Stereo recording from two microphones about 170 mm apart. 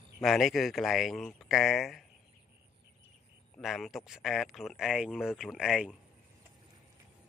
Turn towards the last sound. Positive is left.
turn(degrees=-5)  # may be behind; listen again after turning